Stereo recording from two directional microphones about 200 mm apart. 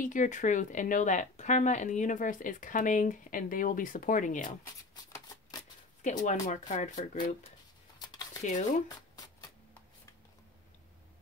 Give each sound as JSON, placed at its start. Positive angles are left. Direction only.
{"t": 0.0, "sound": "speech", "side_deg": 40}
{"t": 4.9, "sound": "shuffling cards", "side_deg": 20}
{"t": 6.0, "sound": "speech", "side_deg": 35}
{"t": 8.0, "sound": "a sound", "side_deg": 20}
{"t": 8.4, "sound": "speech", "side_deg": 35}
{"t": 8.8, "sound": "shuffling cards", "side_deg": 20}